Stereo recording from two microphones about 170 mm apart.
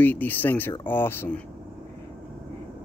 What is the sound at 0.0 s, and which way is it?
Speech, 10° left (ahead or behind).